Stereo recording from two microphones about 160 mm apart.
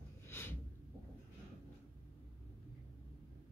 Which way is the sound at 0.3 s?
15° left (ahead or behind).